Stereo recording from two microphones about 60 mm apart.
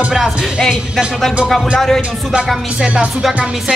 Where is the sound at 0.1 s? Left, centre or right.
Centre.